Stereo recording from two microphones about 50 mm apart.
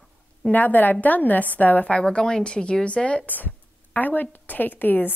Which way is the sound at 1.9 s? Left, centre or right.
Centre.